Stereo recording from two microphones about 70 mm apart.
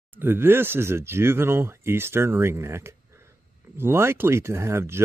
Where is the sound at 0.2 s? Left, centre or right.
Right.